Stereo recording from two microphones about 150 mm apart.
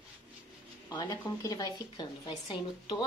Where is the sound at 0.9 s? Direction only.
25° left (ahead or behind).